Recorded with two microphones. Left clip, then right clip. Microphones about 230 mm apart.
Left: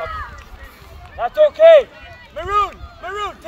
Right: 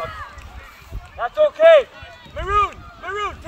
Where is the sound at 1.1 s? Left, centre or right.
Left.